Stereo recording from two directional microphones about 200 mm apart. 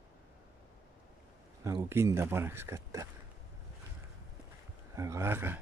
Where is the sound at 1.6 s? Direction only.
15° right (ahead or behind).